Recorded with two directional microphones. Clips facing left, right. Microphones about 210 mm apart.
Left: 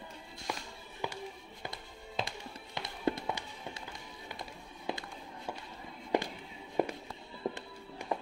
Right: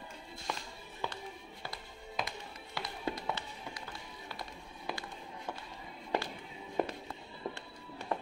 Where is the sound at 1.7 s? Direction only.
25° left (ahead or behind).